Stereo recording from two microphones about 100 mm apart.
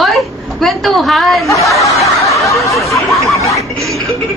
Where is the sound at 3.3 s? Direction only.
30° left (ahead or behind).